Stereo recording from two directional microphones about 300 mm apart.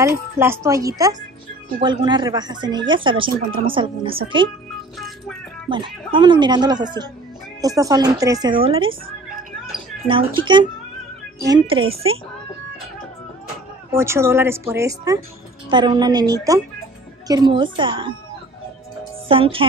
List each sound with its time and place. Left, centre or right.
0.0 s speech: centre
4.9 s music: centre
5.7 s speech: centre
10.0 s speech: centre
13.9 s speech: centre
19.2 s speech: centre